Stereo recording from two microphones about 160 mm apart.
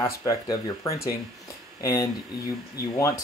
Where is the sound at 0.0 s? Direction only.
20° left (ahead or behind).